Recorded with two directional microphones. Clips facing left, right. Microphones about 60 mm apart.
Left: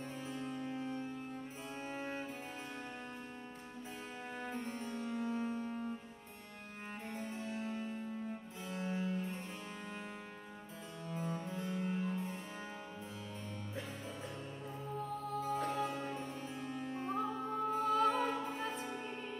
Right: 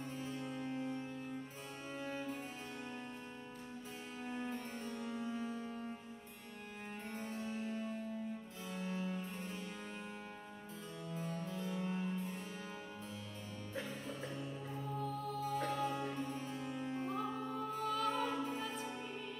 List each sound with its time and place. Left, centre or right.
5.2 s music: left
11.1 s music: left
15.0 s music: left
16.9 s music: left